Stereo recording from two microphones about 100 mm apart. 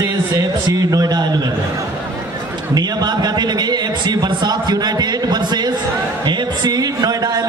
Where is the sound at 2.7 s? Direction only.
45° right (ahead or behind).